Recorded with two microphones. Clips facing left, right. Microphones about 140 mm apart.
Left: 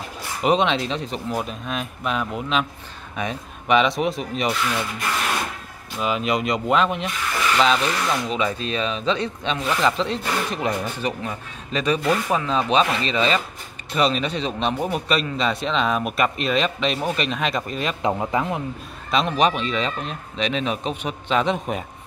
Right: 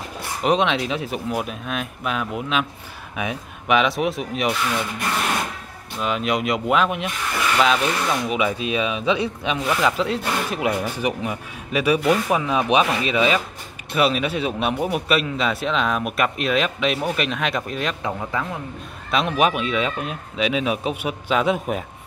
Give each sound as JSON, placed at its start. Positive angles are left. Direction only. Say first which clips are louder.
{"t": 0.4, "sound": "a man's voice", "louder": "even", "side_deg": 0}
{"t": 5.9, "sound": "a man's voice", "louder": "even", "side_deg": 0}
{"t": 18.0, "sound": "a man's voice", "louder": "left 4 dB", "side_deg": 20}
{"t": 19.0, "sound": "speech", "louder": "even", "side_deg": -5}